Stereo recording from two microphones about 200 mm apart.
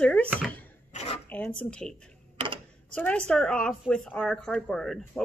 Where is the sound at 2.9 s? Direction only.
5° left (ahead or behind).